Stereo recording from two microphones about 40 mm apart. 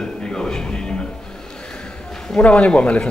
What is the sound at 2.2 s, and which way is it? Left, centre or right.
Speech, left.